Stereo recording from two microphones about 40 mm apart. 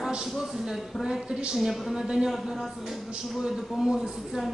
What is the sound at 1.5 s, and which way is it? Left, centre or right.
Speech, centre.